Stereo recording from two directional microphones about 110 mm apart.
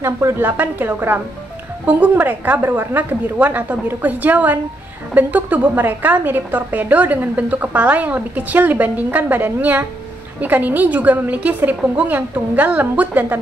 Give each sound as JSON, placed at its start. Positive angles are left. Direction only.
{"t": 0.0, "sound": "a woman's voice", "side_deg": -25}